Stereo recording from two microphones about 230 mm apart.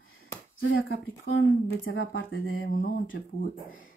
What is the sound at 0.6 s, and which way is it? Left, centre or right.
Speech, left.